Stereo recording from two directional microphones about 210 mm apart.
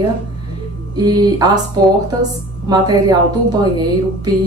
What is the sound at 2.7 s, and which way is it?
A woman's voice, 20° right (ahead or behind).